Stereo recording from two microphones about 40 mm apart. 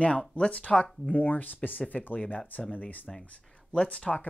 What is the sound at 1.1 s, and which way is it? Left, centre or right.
Speech, left.